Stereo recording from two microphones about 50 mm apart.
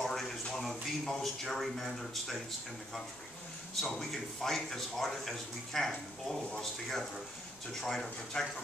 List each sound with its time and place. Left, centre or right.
0.0 s a sound: centre
0.6 s a man's voice: centre
3.8 s a man's voice: centre